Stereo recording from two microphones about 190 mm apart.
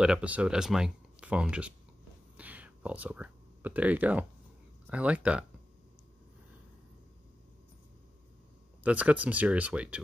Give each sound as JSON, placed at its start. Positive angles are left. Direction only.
{"t": 0.0, "sound": "speech", "side_deg": -5}
{"t": 2.3, "sound": "a sound", "side_deg": -5}
{"t": 4.8, "sound": "speech", "side_deg": -5}
{"t": 8.8, "sound": "speech", "side_deg": -5}